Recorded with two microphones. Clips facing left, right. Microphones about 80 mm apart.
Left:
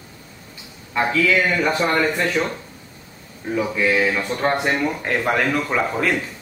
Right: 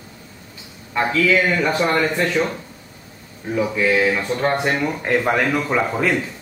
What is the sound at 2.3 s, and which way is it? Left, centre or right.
A man's voice, centre.